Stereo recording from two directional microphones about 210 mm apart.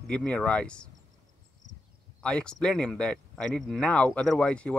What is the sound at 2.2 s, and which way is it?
Speech, 5° left (ahead or behind).